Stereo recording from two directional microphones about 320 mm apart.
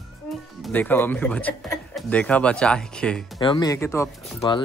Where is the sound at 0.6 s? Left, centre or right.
Centre.